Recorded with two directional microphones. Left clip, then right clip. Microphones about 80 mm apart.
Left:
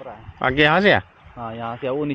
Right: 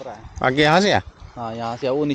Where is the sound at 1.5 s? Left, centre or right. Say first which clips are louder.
Right 2 dB; right.